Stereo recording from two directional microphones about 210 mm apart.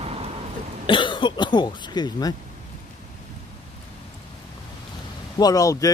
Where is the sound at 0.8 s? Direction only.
25° left (ahead or behind).